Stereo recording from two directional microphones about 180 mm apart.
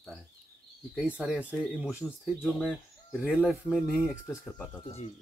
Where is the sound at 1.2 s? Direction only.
5° right (ahead or behind).